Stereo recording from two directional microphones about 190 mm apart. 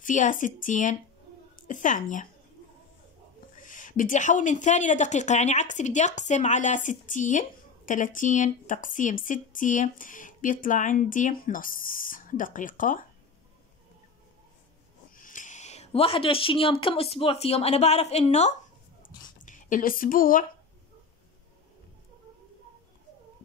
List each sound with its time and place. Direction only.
0.0 s speech: 45° left (ahead or behind)
3.5 s speech: 45° left (ahead or behind)
15.1 s a woman's voice: 45° left (ahead or behind)